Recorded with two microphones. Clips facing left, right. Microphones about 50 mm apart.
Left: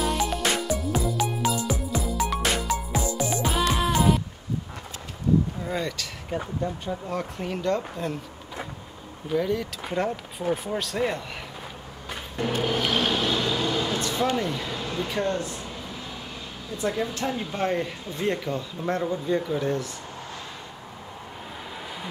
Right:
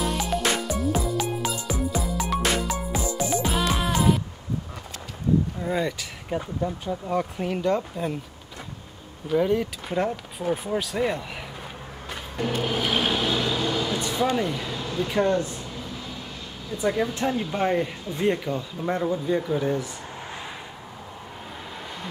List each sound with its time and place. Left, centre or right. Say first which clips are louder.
0.0 s music: even; centre
5.6 s vehicle: right 3 dB; centre
7.1 s speech: right 6 dB; centre
9.4 s speech: right 4 dB; right
9.8 s speech: left 2 dB; centre
12.1 s a sound: even; centre
12.6 s vehicle: even; centre
13.9 s speech: right 1 dB; centre
14.7 s a sound: even; centre
15.1 s speech: right 5 dB; right
16.7 s speech: right 3 dB; centre